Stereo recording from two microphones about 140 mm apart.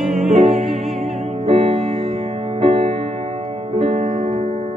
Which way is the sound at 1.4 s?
45° right (ahead or behind).